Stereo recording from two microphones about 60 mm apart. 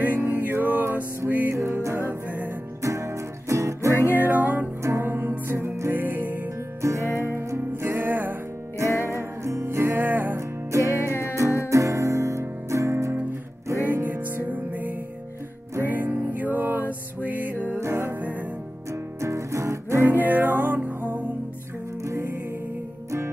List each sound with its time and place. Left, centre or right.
0.0 s music: right
1.5 s music: right
4.0 s music: right
4.8 s music: right
6.8 s music: right
9.1 s music: right
9.9 s music: right
10.3 s music: right
11.1 s music: left
11.7 s music: right
13.8 s music: right
17.7 s music: right
20.1 s music: right